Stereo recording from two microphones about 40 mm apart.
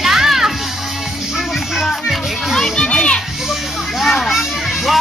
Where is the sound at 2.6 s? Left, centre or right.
Centre.